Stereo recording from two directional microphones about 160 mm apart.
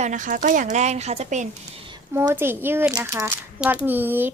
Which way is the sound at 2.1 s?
15° right (ahead or behind).